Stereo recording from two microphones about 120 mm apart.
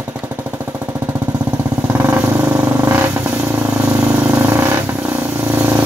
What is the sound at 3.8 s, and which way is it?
Vehicle, 10° right (ahead or behind).